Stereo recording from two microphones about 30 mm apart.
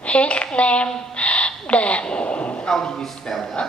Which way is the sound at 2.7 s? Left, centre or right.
Centre.